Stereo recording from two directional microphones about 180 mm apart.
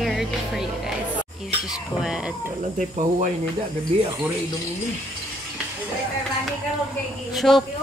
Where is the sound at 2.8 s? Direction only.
45° right (ahead or behind).